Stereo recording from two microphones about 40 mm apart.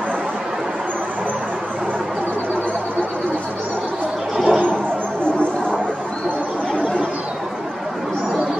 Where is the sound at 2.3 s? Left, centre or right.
Right.